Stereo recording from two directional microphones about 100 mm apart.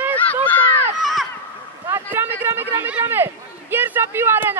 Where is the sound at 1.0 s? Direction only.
Centre (ahead or behind).